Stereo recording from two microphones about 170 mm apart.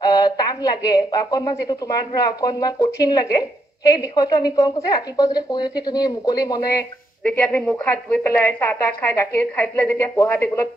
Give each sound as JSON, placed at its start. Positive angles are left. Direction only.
{"t": 0.0, "sound": "a woman's voice", "side_deg": 25}
{"t": 7.2, "sound": "a woman's voice", "side_deg": 10}